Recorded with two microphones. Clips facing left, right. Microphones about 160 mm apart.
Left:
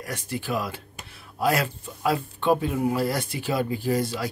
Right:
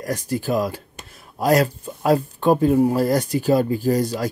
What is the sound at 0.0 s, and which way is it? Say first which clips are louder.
Speech: right 8 dB; 40° right (ahead or behind).